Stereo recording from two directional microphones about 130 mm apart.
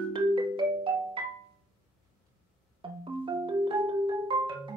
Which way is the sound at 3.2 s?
35° right (ahead or behind).